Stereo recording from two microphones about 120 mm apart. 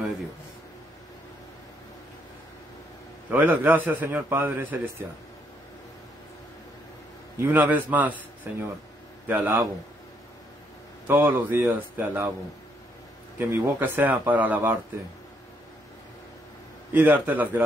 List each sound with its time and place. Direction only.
3.3 s a man's voice: 15° right (ahead or behind)
7.3 s a man's voice: 15° right (ahead or behind)
11.1 s a man's voice: 15° right (ahead or behind)
13.4 s a man's voice: 20° right (ahead or behind)
16.9 s a man's voice: 15° right (ahead or behind)